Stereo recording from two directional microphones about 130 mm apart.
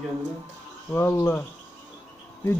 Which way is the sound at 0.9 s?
20° left (ahead or behind).